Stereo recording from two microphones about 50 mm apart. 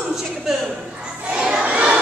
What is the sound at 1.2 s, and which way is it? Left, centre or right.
Crowd, centre.